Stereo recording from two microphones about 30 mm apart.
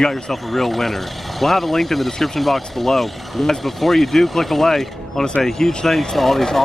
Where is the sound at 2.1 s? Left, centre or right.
Centre.